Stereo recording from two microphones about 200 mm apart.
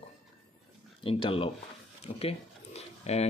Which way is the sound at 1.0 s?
25° left (ahead or behind).